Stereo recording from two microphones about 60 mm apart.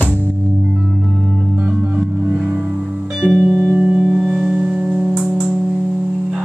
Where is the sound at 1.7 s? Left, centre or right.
Centre.